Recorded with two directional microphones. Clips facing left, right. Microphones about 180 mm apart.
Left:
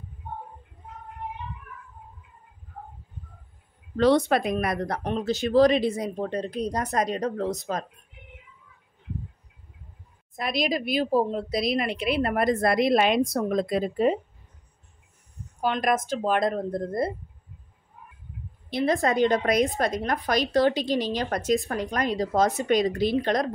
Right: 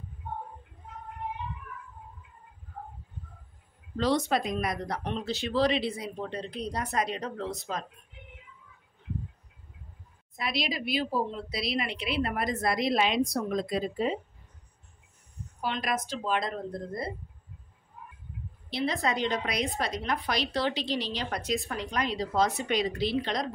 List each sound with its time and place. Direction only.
3.9 s speech: 60° left (ahead or behind); by 7.8 s 45° left (ahead or behind)
10.3 s a woman's voice: 50° left (ahead or behind)
15.6 s speech: 50° left (ahead or behind)
18.7 s speech: 50° left (ahead or behind)